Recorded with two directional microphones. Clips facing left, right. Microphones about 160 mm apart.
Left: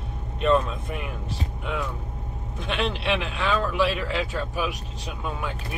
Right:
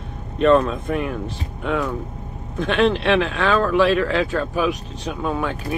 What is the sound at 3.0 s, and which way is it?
Speech, 90° right.